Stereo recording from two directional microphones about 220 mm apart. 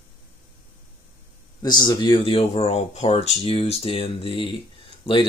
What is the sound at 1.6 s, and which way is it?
Speech, 20° left (ahead or behind).